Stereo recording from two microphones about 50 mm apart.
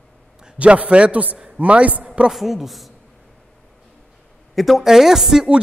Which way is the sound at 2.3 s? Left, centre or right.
Centre.